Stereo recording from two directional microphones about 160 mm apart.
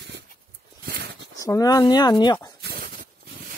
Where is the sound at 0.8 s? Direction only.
65° right (ahead or behind).